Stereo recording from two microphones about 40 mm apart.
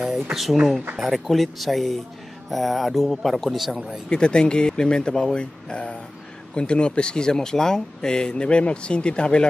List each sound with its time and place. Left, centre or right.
0.0 s speech: centre
4.1 s speech: left